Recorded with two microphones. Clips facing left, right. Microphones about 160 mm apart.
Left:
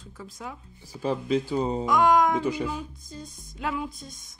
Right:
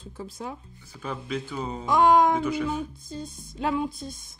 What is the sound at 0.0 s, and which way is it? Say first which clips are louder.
Music: right 3 dB; 30° right (ahead or behind).